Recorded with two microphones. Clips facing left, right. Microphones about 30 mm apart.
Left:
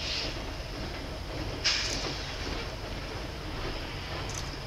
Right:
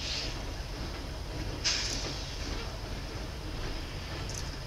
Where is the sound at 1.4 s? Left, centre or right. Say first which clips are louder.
Left 3 dB; left.